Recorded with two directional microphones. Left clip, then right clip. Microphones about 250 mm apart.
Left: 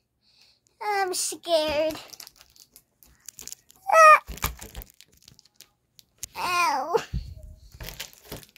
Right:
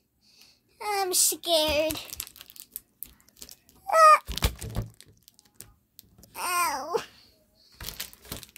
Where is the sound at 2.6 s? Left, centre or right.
Right.